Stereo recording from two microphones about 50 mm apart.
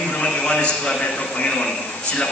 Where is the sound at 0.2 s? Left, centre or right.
Centre.